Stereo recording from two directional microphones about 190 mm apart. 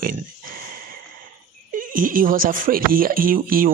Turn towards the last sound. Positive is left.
turn(degrees=-50)  # may be behind; listen again after turning